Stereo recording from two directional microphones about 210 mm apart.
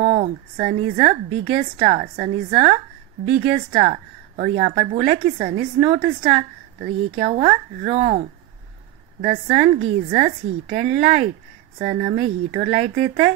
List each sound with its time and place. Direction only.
0.0 s a woman's voice: 30° right (ahead or behind)
9.2 s a woman's voice: 30° right (ahead or behind)